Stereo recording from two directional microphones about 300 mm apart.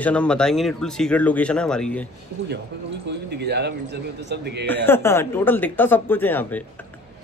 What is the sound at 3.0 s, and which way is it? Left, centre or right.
A man's voice, right.